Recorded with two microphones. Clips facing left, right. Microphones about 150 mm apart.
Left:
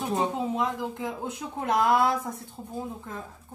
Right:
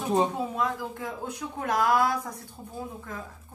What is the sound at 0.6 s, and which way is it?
Speech, 20° left (ahead or behind).